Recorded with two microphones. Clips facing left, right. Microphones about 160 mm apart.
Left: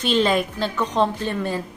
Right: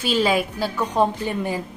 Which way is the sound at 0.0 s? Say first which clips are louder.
Left 1 dB; 5° right (ahead or behind).